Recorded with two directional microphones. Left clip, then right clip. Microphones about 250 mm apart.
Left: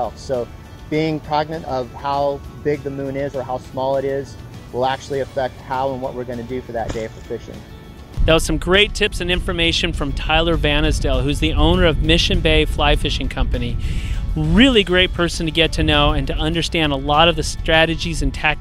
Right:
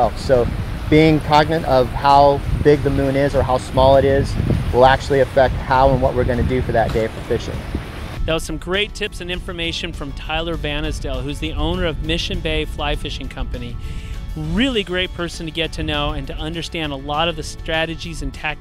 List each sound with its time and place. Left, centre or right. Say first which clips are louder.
0.3 s speech: right 7 dB; centre
8.3 s speech: left 6 dB; centre